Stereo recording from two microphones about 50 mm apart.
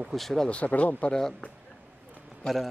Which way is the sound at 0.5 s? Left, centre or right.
Left.